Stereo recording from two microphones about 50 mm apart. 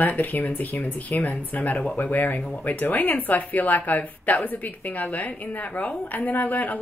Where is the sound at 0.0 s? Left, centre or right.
Left.